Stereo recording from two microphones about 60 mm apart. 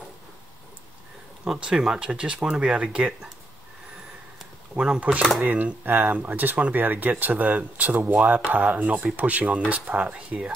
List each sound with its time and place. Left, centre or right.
1.4 s speech: centre
4.7 s speech: centre
5.4 s speech: right